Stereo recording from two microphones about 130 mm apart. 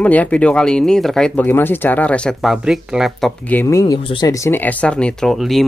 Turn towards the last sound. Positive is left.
turn(degrees=0)  # may be behind; listen again after turning